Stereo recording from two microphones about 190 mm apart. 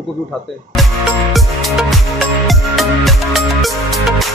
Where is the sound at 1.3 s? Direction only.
Centre (ahead or behind).